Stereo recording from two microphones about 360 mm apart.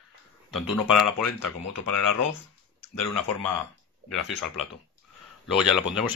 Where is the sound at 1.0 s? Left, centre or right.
Left.